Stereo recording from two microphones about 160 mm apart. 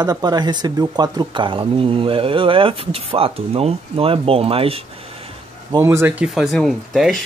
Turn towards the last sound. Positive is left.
turn(degrees=0)  # may be behind; listen again after turning